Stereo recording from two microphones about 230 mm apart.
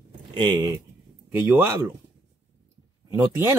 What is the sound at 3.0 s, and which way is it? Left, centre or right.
Speech, centre.